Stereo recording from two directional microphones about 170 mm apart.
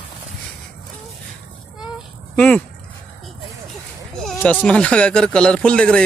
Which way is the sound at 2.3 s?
5° left (ahead or behind).